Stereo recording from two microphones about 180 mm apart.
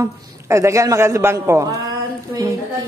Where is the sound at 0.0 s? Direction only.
15° right (ahead or behind).